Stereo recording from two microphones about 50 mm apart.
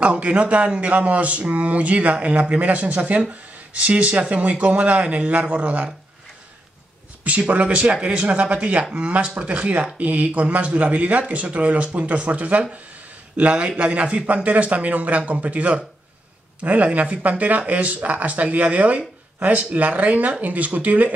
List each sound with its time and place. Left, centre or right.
0.0 s speech: right
7.2 s speech: right